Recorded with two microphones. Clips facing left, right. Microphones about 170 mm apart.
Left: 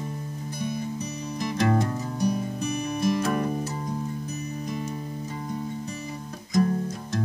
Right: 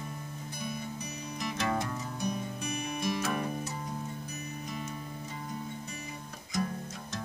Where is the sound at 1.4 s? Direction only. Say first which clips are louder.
Left 8 dB; 40° left (ahead or behind).